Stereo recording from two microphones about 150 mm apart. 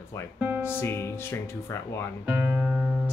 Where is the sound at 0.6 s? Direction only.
15° left (ahead or behind).